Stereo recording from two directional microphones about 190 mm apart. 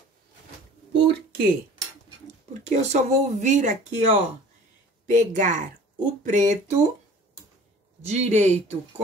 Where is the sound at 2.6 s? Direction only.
35° right (ahead or behind).